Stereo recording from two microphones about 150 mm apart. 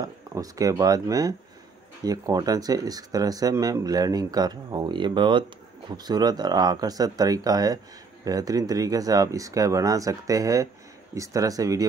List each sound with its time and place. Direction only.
0.0 s speech: 25° right (ahead or behind)